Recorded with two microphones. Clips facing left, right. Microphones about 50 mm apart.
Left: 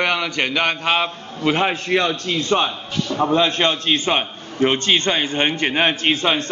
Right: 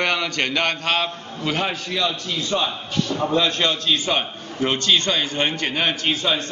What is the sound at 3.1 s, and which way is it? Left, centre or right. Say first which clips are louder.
A man's voice: left 4 dB; left.